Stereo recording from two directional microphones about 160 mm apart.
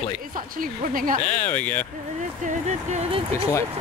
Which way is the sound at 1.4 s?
10° left (ahead or behind).